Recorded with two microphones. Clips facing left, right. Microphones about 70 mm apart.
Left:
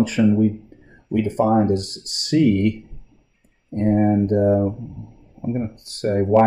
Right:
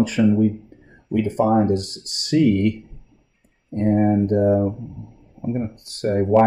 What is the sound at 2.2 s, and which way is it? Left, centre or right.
Speech, left.